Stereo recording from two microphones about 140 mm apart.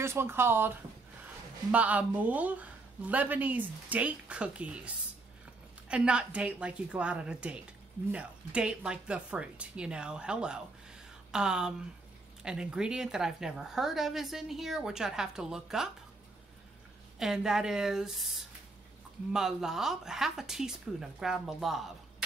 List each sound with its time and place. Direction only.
0.0 s a woman's voice: 15° right (ahead or behind)
17.2 s a woman's voice: 5° right (ahead or behind)
19.3 s a woman's voice: 5° right (ahead or behind)